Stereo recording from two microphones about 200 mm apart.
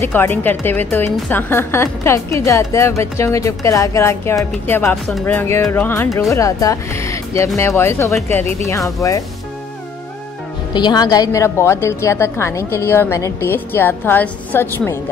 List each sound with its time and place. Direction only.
0.0 s a woman's voice: 10° left (ahead or behind)
10.7 s a woman's voice: 20° left (ahead or behind)